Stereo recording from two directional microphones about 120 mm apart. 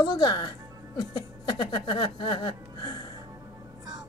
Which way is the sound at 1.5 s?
35° left (ahead or behind).